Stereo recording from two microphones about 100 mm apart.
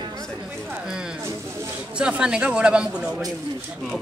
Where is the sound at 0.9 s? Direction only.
5° right (ahead or behind).